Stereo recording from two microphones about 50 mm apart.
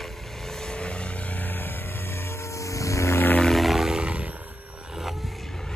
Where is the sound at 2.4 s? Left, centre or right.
Left.